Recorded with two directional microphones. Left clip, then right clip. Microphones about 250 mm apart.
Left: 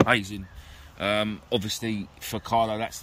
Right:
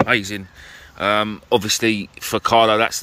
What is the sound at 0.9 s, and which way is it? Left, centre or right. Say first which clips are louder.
Speech: right 7 dB; centre.